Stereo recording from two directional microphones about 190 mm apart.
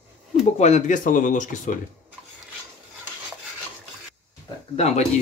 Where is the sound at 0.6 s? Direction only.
40° left (ahead or behind).